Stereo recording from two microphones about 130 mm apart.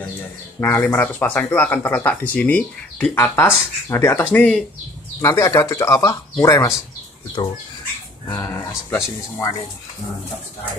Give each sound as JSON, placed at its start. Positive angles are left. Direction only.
{"t": 0.6, "sound": "speech", "side_deg": 15}
{"t": 5.2, "sound": "speech", "side_deg": 20}
{"t": 7.4, "sound": "speech", "side_deg": 35}
{"t": 8.3, "sound": "speech", "side_deg": 15}